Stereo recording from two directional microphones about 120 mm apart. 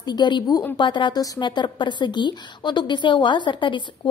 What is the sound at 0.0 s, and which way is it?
A woman's voice, 35° left (ahead or behind).